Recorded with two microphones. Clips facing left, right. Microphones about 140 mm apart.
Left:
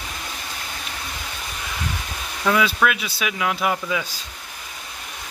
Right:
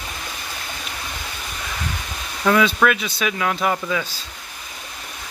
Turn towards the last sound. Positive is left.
turn(degrees=15)  # may be behind; listen again after turning